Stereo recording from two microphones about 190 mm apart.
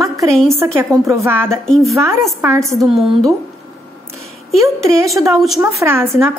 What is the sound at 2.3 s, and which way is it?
Speech, 15° right (ahead or behind).